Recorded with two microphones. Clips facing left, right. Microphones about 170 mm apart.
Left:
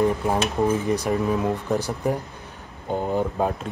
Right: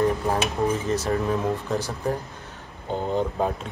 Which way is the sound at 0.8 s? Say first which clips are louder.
Left 2 dB; 15° left (ahead or behind).